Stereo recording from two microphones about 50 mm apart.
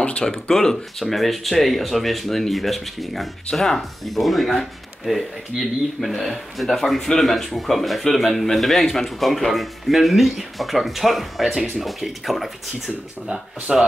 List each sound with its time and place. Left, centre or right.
0.2 s speech: centre
13.3 s speech: centre